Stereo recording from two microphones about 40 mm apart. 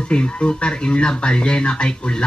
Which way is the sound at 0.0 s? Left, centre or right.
Left.